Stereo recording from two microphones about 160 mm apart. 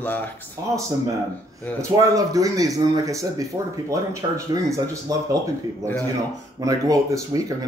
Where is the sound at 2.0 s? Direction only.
20° right (ahead or behind).